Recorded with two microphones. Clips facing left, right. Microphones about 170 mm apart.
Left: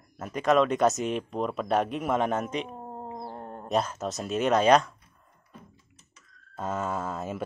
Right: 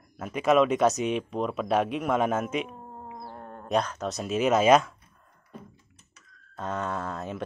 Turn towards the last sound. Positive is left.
turn(degrees=5)  # may be behind; listen again after turning